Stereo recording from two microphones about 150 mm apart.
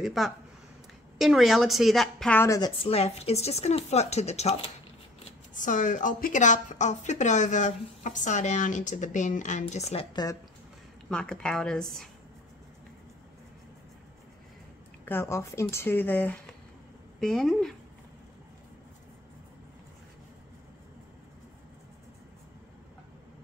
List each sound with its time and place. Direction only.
0.0 s a woman's voice: centre (ahead or behind)
2.3 s speech: 20° left (ahead or behind)
2.8 s a woman's voice: 40° left (ahead or behind)
5.5 s a woman's voice: 60° left (ahead or behind)
11.1 s a woman's voice: 5° left (ahead or behind)
15.0 s a woman's voice: 15° left (ahead or behind)